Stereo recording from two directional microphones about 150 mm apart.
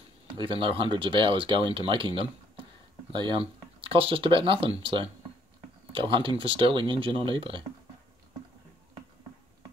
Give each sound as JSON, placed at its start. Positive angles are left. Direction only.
{"t": 0.3, "sound": "speech", "side_deg": -35}